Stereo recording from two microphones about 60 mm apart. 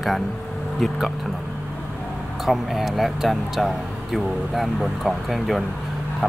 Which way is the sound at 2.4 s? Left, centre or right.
Centre.